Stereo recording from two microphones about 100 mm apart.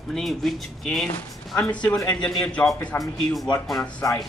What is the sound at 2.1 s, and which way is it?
Speech, 10° left (ahead or behind).